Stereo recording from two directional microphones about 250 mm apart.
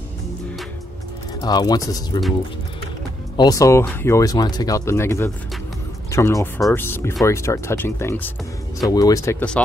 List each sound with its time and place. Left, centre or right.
1.4 s speech: centre
3.3 s speech: centre